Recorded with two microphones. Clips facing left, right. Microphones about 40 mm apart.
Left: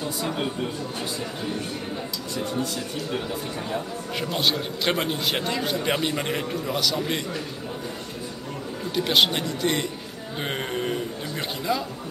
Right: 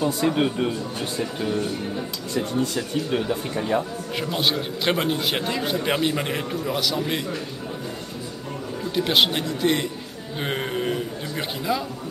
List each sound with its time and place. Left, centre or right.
0.0 s a man's voice: right
2.6 s a man's voice: right
3.2 s a man's voice: centre
4.2 s a man's voice: centre
8.9 s a man's voice: centre